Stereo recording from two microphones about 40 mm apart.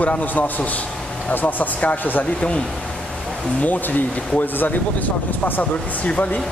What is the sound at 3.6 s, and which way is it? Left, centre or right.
Speech, left.